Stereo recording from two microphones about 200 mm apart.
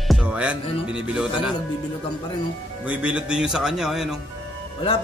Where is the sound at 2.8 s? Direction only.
5° right (ahead or behind).